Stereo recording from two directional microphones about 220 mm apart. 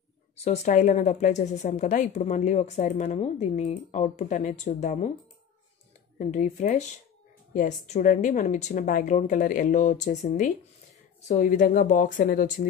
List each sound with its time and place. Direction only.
0.4 s speech: 30° left (ahead or behind)
6.1 s speech: 35° left (ahead or behind)